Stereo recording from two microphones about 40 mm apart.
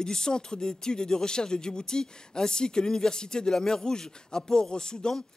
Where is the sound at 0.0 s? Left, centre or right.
Centre.